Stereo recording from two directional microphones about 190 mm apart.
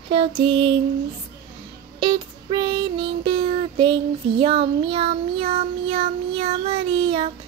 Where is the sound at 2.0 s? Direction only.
25° right (ahead or behind).